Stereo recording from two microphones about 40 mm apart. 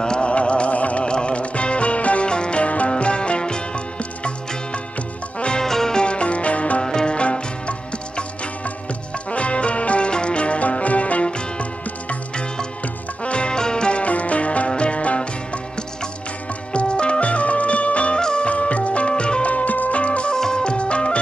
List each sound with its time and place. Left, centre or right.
0.0 s music: centre; by 1.0 s left
1.0 s music: left
5.6 s music: centre
6.0 s music: left
6.8 s music: centre
7.2 s music: left
9.3 s music: left
11.2 s music: left
13.2 s music: left
16.7 s music: left
19.5 s music: left
20.0 s music: left
20.3 s music: centre